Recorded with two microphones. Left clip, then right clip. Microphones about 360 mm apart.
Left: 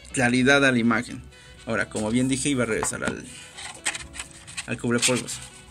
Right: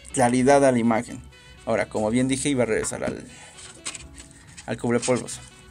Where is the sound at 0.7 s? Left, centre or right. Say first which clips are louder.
Right 1 dB; centre.